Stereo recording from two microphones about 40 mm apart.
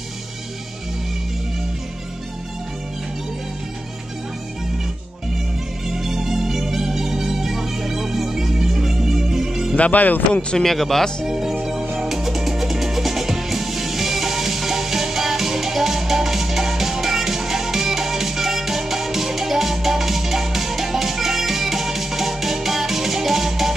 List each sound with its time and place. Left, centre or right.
5.9 s music: centre
9.8 s speech: left
10.6 s speech: centre
11.2 s music: centre